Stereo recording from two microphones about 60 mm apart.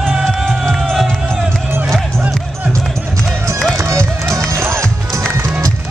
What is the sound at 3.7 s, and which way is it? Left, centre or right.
Music, right.